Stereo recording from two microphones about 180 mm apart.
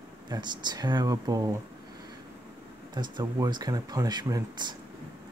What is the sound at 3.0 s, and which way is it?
Speech, 25° right (ahead or behind).